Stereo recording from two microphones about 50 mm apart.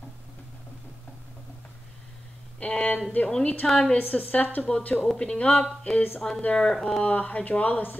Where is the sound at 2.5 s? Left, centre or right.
Left.